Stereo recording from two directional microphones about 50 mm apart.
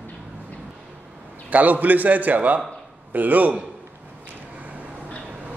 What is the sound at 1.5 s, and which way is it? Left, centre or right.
A man's voice, right.